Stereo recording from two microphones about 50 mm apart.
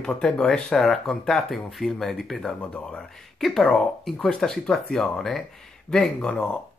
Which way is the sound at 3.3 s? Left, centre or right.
Centre.